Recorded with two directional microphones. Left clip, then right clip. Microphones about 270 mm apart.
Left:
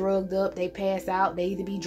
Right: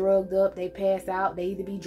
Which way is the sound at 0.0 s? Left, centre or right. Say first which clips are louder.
Right 4 dB; left.